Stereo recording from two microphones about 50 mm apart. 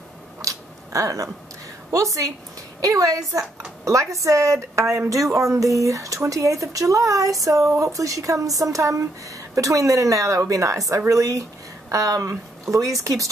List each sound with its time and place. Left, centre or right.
0.4 s a sound: right
1.9 s a woman's voice: right
5.1 s speech: right